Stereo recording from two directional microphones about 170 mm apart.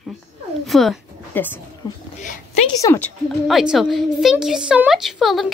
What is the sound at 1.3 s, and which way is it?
Speech, 10° left (ahead or behind).